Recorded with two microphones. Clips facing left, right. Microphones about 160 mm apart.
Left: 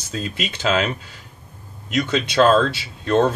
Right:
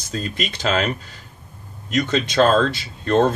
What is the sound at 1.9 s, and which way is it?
Speech, 10° left (ahead or behind).